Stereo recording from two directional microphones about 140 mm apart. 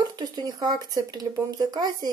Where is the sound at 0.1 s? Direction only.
30° right (ahead or behind).